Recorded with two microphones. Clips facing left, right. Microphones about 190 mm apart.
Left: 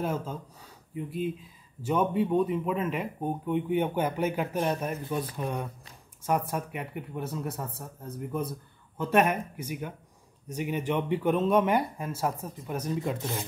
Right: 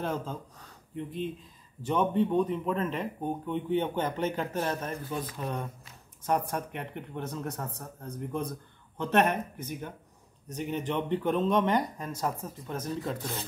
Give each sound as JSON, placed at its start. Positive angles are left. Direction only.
{"t": 0.0, "sound": "speech", "side_deg": 5}